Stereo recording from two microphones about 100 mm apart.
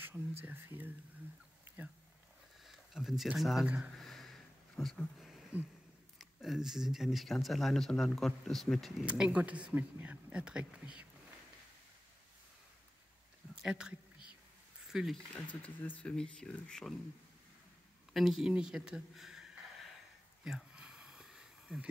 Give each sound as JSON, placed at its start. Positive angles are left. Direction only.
{"t": 0.4, "sound": "speech", "side_deg": -20}
{"t": 2.6, "sound": "speech", "side_deg": 0}
{"t": 3.6, "sound": "speech", "side_deg": -15}
{"t": 4.0, "sound": "a sound", "side_deg": 5}
{"t": 6.1, "sound": "speech", "side_deg": 0}
{"t": 9.0, "sound": "speech", "side_deg": -15}
{"t": 13.6, "sound": "speech", "side_deg": -10}
{"t": 15.6, "sound": "speech", "side_deg": 15}
{"t": 18.1, "sound": "speech", "side_deg": 0}
{"t": 20.4, "sound": "a sound", "side_deg": -5}